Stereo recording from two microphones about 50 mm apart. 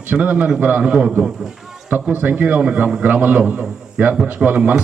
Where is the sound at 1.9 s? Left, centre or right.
Right.